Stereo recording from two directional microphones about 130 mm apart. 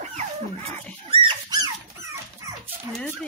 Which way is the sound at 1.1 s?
35° right (ahead or behind).